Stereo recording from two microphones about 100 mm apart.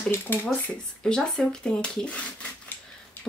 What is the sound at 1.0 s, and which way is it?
Speech, 5° left (ahead or behind).